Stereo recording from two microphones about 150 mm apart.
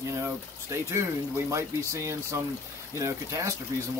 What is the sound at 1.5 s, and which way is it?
Speech, 20° right (ahead or behind).